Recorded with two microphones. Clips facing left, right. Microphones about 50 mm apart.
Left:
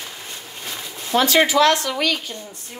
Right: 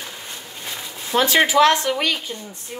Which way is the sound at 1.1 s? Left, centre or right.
Right.